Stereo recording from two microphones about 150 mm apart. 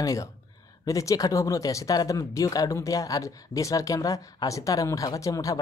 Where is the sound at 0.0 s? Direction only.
20° left (ahead or behind).